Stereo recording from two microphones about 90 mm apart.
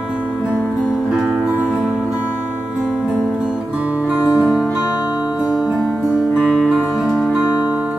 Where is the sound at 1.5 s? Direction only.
15° right (ahead or behind).